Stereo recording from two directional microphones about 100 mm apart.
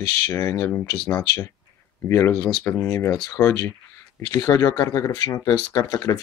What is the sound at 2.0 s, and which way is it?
Speech, 30° left (ahead or behind).